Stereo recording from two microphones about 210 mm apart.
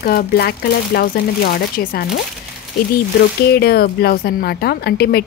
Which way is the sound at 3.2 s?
50° left (ahead or behind).